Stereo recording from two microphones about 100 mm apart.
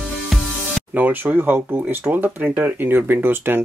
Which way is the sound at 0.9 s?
20° right (ahead or behind).